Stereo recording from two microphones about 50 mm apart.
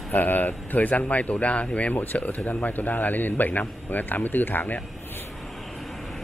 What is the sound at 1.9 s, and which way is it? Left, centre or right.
Speech, left.